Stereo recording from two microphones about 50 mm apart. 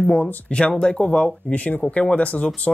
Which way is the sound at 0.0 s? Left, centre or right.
Left.